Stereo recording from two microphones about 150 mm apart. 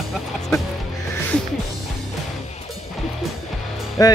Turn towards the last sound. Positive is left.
turn(degrees=25)  # may be behind; listen again after turning